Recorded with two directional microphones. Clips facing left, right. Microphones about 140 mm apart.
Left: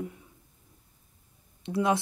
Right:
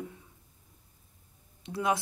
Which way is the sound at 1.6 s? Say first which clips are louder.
Left 4 dB; 25° left (ahead or behind).